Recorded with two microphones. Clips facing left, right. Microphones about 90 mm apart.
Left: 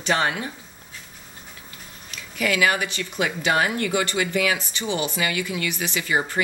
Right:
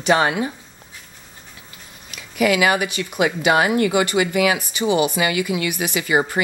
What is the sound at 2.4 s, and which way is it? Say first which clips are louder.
Speech: right 5 dB; 10° right (ahead or behind).